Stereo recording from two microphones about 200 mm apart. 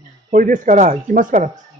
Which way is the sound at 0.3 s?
40° right (ahead or behind).